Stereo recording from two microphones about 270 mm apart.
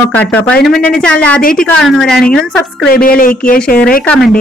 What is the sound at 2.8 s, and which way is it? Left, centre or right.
Speech, left.